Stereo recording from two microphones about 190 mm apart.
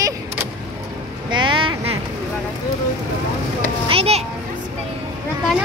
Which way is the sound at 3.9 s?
30° right (ahead or behind).